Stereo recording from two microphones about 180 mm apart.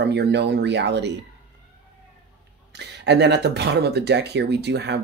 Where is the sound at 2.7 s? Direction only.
70° right (ahead or behind).